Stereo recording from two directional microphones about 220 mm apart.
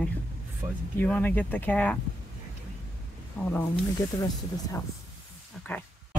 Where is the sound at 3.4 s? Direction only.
10° left (ahead or behind).